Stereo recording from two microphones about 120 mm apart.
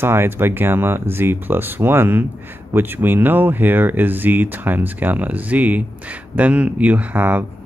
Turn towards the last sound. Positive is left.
turn(degrees=-15)  # may be behind; listen again after turning